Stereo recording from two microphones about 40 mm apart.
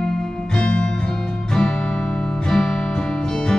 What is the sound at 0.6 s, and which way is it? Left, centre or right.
Music, left.